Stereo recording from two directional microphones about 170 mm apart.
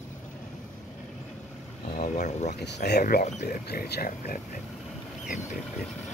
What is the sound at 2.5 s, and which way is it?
Speech, 80° left.